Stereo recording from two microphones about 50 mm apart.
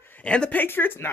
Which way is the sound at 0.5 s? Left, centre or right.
Left.